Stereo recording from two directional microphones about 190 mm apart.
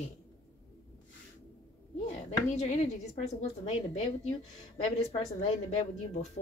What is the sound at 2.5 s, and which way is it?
Speech, 35° left (ahead or behind).